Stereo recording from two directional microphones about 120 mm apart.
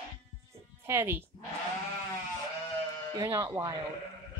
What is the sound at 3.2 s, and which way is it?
Speech, 20° right (ahead or behind).